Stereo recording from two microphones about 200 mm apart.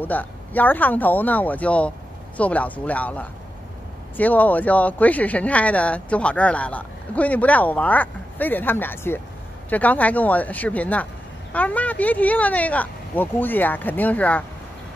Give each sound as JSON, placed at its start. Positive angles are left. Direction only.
{"t": 0.0, "sound": "speech", "side_deg": 10}